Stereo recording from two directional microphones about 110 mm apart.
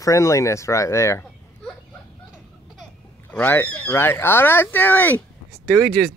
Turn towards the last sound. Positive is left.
turn(degrees=5)  # may be behind; listen again after turning